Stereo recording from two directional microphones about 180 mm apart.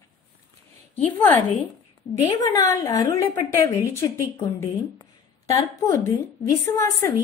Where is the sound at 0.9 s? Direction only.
10° left (ahead or behind).